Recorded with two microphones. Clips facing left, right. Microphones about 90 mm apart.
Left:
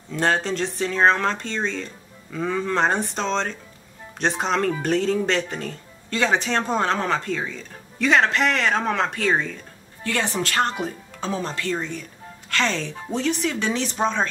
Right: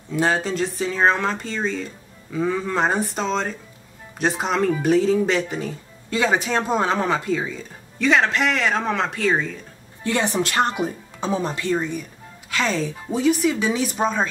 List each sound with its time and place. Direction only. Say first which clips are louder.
0.1 s speech: right 1 dB; 5° right (ahead or behind)
10.0 s speech: right 3 dB; 20° right (ahead or behind)